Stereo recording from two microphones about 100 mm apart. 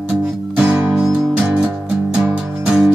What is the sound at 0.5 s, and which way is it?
Music, 15° right (ahead or behind).